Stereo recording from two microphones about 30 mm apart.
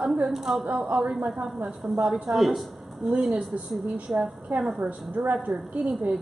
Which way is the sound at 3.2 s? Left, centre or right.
Right.